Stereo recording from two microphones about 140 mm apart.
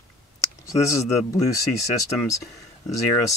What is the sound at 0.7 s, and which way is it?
Speech, 20° left (ahead or behind).